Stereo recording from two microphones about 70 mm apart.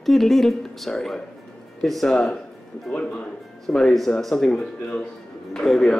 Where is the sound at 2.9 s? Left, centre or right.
Centre.